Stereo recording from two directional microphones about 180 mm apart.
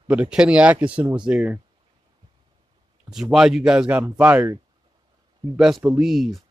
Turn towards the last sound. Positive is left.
turn(degrees=0)  # may be behind; listen again after turning